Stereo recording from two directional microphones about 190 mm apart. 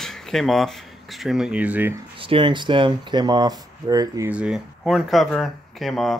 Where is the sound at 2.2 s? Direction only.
25° right (ahead or behind).